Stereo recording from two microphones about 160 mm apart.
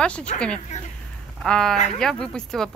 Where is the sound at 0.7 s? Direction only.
45° left (ahead or behind).